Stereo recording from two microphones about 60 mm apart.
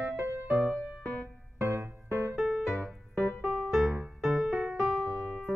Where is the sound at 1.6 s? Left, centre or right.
Right.